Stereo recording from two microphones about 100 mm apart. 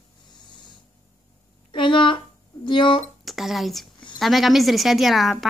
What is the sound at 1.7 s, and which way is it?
Speech, 55° left (ahead or behind).